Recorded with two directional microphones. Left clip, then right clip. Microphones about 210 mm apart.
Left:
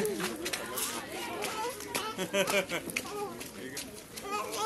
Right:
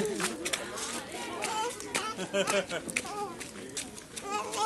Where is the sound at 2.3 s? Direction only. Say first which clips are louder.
Even; 50° left (ahead or behind).